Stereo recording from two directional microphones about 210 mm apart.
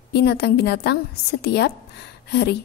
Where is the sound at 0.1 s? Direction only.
55° left (ahead or behind).